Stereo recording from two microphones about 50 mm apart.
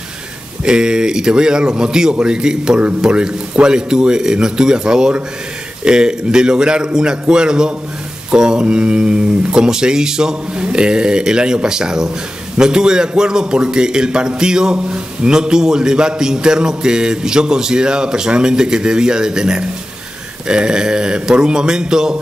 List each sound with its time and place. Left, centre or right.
0.7 s a man's voice: centre